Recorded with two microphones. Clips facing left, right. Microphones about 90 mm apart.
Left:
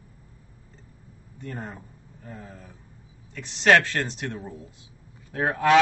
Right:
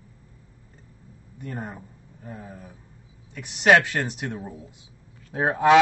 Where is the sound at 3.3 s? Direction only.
15° right (ahead or behind).